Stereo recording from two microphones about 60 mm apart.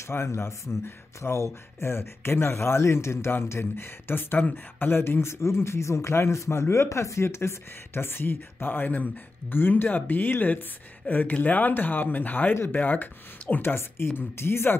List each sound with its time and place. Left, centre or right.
0.1 s speech: left